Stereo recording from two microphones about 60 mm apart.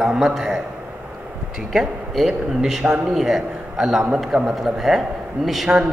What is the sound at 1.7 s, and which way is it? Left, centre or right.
A man's voice, centre.